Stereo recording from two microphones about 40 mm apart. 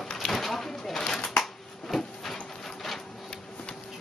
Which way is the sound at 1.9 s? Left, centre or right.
Centre.